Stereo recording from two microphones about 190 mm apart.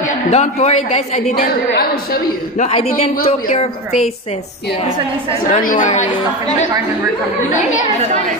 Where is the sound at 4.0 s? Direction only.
35° left (ahead or behind).